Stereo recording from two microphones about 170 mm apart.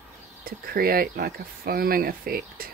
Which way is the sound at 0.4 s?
60° right (ahead or behind).